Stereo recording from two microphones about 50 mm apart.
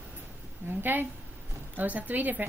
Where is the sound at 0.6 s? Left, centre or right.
Right.